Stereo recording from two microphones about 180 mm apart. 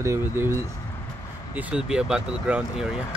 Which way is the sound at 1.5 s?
5° right (ahead or behind).